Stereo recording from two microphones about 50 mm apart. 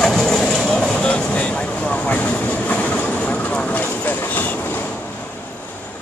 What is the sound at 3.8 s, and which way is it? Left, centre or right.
Train, left.